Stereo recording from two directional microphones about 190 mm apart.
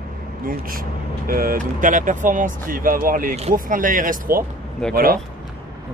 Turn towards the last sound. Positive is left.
turn(degrees=-50)  # may be behind; listen again after turning